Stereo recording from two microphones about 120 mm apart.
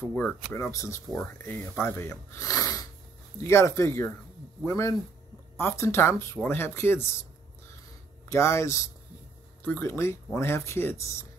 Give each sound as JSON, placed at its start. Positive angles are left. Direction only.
{"t": 0.0, "sound": "speech", "side_deg": 15}
{"t": 8.3, "sound": "speech", "side_deg": 25}